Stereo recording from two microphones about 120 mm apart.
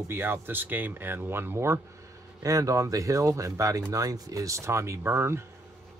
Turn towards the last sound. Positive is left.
turn(degrees=-20)  # may be behind; listen again after turning